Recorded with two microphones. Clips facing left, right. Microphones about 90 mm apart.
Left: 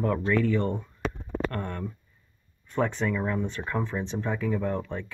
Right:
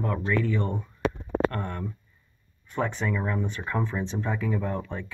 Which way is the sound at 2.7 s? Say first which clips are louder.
Left 1 dB; 5° right (ahead or behind).